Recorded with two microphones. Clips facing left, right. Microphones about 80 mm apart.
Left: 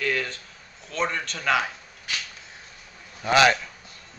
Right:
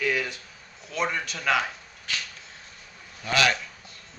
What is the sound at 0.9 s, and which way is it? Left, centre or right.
Speech, centre.